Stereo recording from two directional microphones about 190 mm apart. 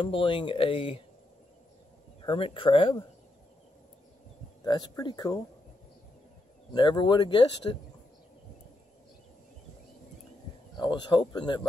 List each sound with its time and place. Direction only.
0.0 s speech: 25° left (ahead or behind)
2.2 s speech: 25° left (ahead or behind)
4.6 s speech: 20° left (ahead or behind)
6.7 s speech: 25° left (ahead or behind)
10.8 s speech: 25° left (ahead or behind)